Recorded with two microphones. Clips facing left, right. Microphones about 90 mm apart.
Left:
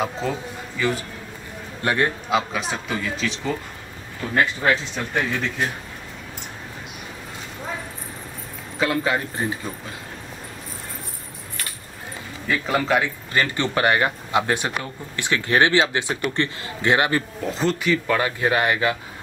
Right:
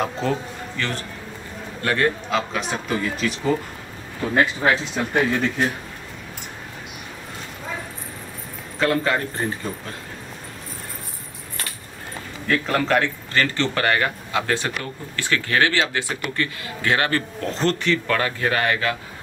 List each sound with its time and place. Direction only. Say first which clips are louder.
0.0 s a man's voice: right 2 dB; 5° left (ahead or behind)
1.8 s a man's voice: right 1 dB; 20° left (ahead or behind)
2.7 s speech: right 2 dB; centre (ahead or behind)
8.7 s a man's voice: right 1 dB; 10° left (ahead or behind)
12.4 s a man's voice: right 1 dB; 5° left (ahead or behind)